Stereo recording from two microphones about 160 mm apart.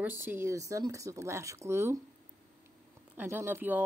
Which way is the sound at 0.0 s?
15° right (ahead or behind).